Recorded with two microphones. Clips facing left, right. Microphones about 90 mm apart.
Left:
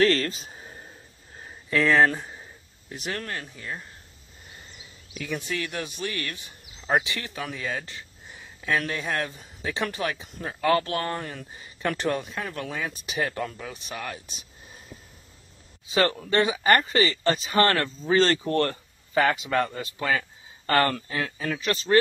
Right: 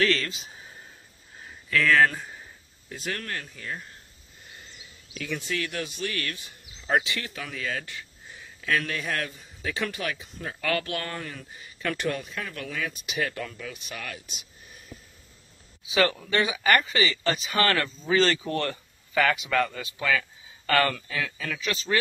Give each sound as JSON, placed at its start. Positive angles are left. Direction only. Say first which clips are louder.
{"t": 0.0, "sound": "speech", "louder": "left 4 dB", "side_deg": 40}
{"t": 1.7, "sound": "speech", "louder": "left 1 dB", "side_deg": 25}
{"t": 5.1, "sound": "speech", "louder": "left 1 dB", "side_deg": 20}
{"t": 15.9, "sound": "speech", "louder": "left 1 dB", "side_deg": 35}